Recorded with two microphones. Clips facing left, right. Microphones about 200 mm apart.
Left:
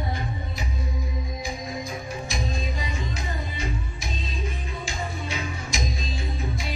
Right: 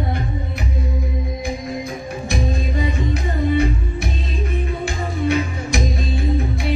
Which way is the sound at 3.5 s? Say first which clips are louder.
Right 13 dB; 60° right (ahead or behind).